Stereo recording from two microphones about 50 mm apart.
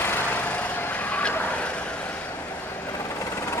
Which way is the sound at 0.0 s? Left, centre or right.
Left.